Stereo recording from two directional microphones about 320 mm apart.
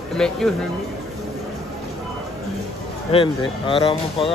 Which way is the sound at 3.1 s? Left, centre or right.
Centre.